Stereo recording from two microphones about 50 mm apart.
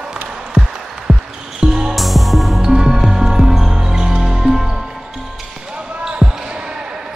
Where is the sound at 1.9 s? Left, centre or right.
Centre.